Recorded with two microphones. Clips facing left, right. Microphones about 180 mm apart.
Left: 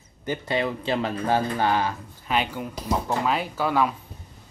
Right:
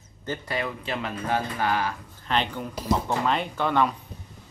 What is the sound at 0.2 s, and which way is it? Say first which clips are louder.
Speech: left 4 dB; 15° left (ahead or behind).